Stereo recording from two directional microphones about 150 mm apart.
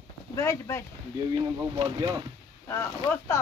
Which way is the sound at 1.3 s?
30° right (ahead or behind).